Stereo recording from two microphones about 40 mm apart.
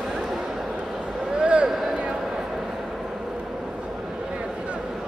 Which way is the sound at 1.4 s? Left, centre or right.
Right.